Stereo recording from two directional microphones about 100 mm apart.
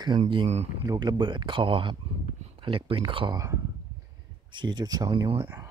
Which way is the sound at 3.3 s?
35° right (ahead or behind).